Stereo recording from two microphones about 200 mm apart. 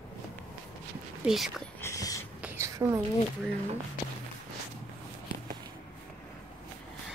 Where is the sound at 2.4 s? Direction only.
15° right (ahead or behind).